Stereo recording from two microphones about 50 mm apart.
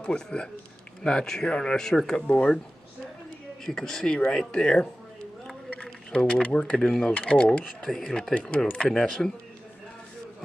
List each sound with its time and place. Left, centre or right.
0.0 s speech: centre
3.6 s speech: centre
6.1 s speech: left
8.4 s speech: left